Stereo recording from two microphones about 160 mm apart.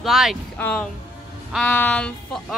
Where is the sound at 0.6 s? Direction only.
10° left (ahead or behind).